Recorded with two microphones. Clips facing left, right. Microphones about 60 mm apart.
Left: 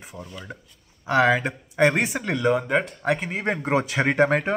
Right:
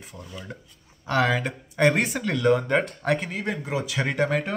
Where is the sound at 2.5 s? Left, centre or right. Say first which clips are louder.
Even; centre.